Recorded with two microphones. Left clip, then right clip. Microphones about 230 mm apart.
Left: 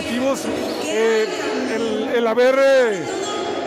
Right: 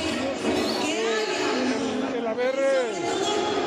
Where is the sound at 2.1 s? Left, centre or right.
Left.